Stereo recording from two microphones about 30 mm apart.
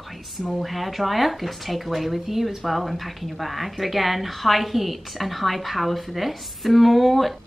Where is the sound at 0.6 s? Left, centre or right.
Centre.